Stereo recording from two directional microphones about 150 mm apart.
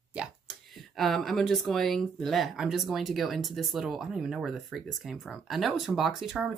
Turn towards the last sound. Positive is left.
turn(degrees=0)  # may be behind; listen again after turning